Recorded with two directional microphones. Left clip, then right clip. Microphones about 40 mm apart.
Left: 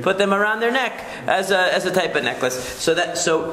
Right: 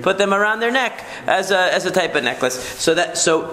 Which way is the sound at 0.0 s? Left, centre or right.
Centre.